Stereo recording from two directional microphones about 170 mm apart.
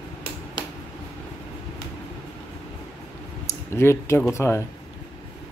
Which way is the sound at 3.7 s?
15° left (ahead or behind).